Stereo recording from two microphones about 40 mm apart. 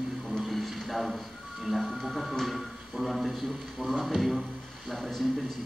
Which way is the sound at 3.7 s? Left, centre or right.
Centre.